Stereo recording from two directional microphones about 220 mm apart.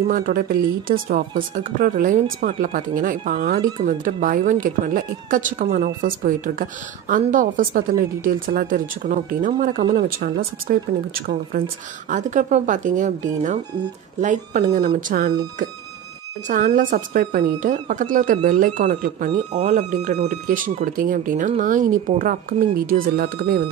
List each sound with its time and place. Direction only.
0.1 s speech: 40° right (ahead or behind)